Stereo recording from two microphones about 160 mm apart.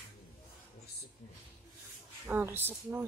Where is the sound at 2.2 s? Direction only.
10° right (ahead or behind).